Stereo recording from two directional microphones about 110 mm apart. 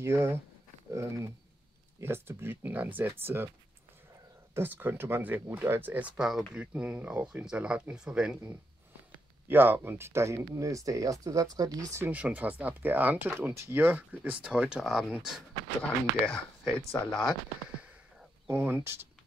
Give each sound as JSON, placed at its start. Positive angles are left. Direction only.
{"t": 0.0, "sound": "speech", "side_deg": -25}
{"t": 4.6, "sound": "speech", "side_deg": -20}
{"t": 6.1, "sound": "speech", "side_deg": -5}
{"t": 9.5, "sound": "speech", "side_deg": -20}
{"t": 12.0, "sound": "speech", "side_deg": -15}
{"t": 16.3, "sound": "speech", "side_deg": 5}
{"t": 18.5, "sound": "speech", "side_deg": -15}